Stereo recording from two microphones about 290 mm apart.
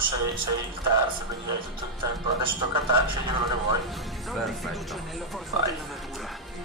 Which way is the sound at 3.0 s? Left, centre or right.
Centre.